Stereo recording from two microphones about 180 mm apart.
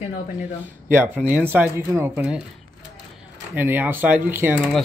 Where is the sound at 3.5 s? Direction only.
10° right (ahead or behind).